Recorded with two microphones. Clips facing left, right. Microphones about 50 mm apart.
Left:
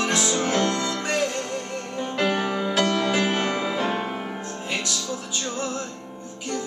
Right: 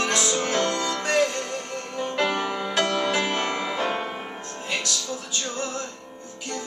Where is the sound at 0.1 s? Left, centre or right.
Centre.